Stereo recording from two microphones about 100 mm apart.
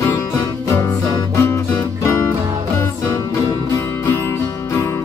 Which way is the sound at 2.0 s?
30° left (ahead or behind).